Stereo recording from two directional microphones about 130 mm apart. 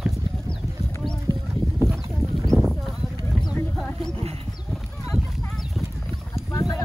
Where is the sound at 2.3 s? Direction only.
Centre (ahead or behind).